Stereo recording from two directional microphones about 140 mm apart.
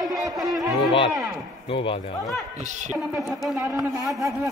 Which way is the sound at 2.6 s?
60° right (ahead or behind).